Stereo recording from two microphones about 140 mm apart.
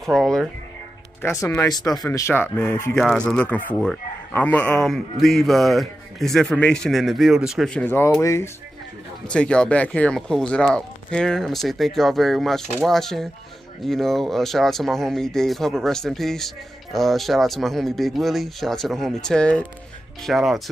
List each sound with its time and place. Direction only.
0.0 s speech: centre (ahead or behind)
1.2 s speech: 15° left (ahead or behind)
2.0 s speech: 15° left (ahead or behind); by 7.7 s centre (ahead or behind)
7.7 s speech: 15° left (ahead or behind)
9.3 s speech: 5° left (ahead or behind)